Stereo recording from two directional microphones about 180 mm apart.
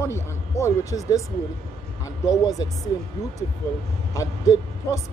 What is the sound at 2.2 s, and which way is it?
Speech, 20° left (ahead or behind).